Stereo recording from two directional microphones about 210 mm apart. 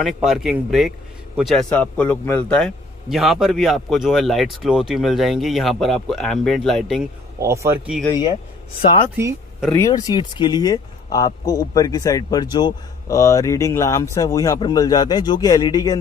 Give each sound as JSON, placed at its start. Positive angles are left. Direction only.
{"t": 0.0, "sound": "a man's voice", "side_deg": 0}
{"t": 7.4, "sound": "speech", "side_deg": -15}
{"t": 9.1, "sound": "speech", "side_deg": -10}
{"t": 9.7, "sound": "speech", "side_deg": 15}